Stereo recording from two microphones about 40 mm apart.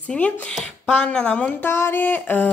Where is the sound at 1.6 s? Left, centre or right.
Left.